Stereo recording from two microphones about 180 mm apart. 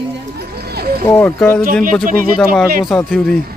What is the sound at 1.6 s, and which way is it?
Speech, 50° right (ahead or behind).